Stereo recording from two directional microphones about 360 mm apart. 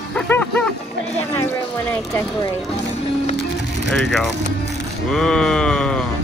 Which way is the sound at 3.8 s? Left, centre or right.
Centre.